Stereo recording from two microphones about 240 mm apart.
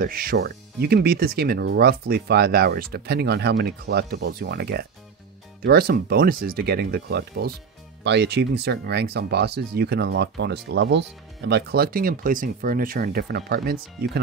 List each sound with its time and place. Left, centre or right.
0.0 s speech: right